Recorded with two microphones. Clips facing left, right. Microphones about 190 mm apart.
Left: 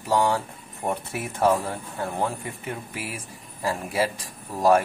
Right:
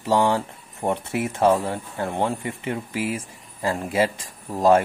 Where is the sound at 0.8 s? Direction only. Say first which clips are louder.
Right 5 dB; 25° right (ahead or behind).